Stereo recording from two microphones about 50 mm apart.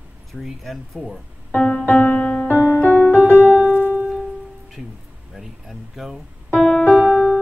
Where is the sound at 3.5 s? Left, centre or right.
Left.